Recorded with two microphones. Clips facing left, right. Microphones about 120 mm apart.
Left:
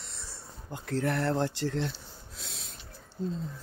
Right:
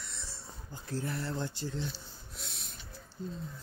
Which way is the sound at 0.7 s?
75° left (ahead or behind).